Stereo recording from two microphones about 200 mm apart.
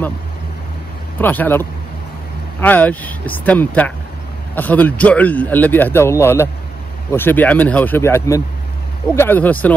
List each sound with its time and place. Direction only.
1.2 s a man's voice: 10° left (ahead or behind)